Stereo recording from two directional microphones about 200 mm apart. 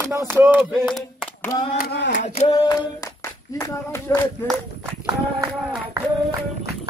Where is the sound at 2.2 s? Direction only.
35° left (ahead or behind).